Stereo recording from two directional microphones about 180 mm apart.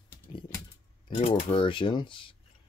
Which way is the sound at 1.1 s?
30° left (ahead or behind).